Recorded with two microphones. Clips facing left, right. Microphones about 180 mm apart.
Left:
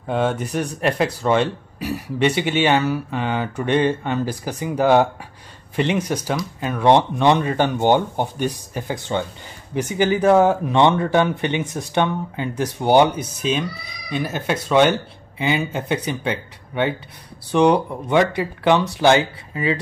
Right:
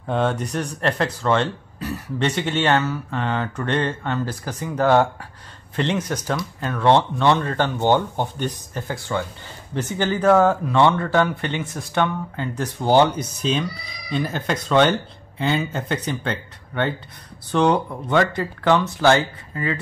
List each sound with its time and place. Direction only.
0.0 s speech: 5° left (ahead or behind)